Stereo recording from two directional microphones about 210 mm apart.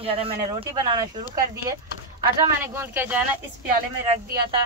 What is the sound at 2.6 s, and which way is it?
Speech, 10° right (ahead or behind).